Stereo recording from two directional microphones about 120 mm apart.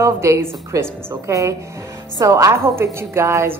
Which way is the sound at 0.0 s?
20° right (ahead or behind).